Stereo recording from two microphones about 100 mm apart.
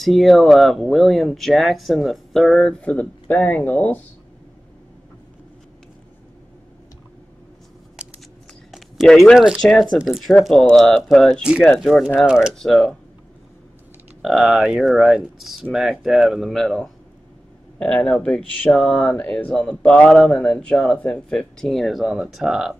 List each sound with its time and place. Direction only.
0.0 s speech: centre (ahead or behind)
2.8 s speech: 15° left (ahead or behind)
8.0 s scissors: 10° right (ahead or behind)
8.7 s speech: centre (ahead or behind)
12.5 s speech: 5° left (ahead or behind)
14.2 s speech: centre (ahead or behind)